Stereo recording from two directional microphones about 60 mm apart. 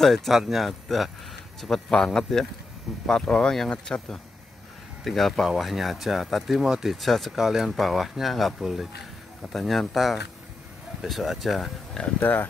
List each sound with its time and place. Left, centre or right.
0.0 s speech: centre
7.3 s speech: centre
12.2 s speech: left